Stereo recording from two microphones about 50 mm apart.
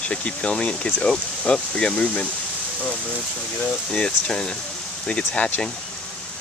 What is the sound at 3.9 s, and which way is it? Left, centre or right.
Speech, centre.